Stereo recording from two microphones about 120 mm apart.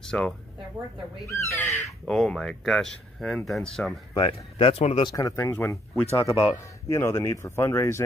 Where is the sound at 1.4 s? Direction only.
25° left (ahead or behind).